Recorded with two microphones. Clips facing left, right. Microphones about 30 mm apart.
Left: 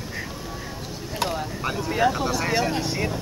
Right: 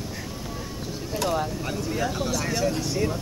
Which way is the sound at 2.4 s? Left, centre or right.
Left.